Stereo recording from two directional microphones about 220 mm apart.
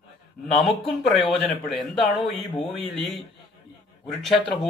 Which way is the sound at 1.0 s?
Centre (ahead or behind).